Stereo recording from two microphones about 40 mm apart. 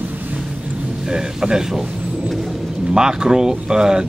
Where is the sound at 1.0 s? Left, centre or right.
Centre.